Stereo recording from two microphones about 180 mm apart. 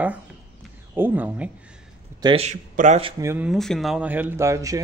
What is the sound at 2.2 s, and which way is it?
Speech, 35° right (ahead or behind).